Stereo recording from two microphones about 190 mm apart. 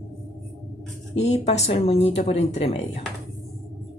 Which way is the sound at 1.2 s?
35° left (ahead or behind).